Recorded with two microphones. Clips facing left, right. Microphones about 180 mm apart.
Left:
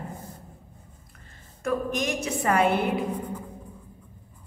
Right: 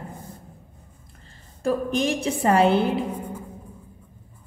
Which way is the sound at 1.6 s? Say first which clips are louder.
Right 4 dB; 30° right (ahead or behind).